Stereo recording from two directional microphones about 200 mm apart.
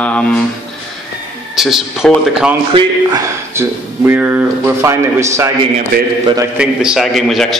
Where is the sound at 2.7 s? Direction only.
15° right (ahead or behind).